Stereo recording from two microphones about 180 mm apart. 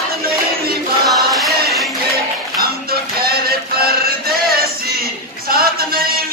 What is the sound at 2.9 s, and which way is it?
Music, 55° right (ahead or behind).